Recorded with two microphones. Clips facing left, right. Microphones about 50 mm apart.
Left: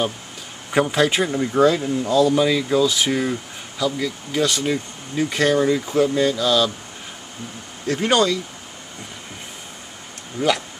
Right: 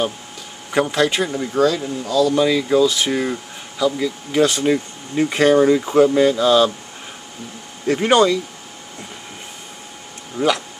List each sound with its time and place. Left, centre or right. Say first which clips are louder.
0.7 s speech: even; centre; by 2.3 s left
2.3 s speech: right 2 dB; centre
4.3 s speech: right 5 dB; centre
7.8 s speech: right 4 dB; centre